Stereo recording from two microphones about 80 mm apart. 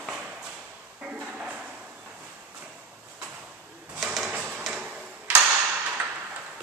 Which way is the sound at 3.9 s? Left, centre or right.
Centre.